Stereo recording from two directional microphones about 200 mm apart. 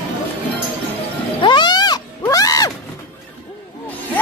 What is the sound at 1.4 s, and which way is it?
Roaring cats, 20° left (ahead or behind).